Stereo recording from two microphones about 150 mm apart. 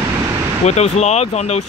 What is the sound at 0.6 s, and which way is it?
Speech, 45° left (ahead or behind).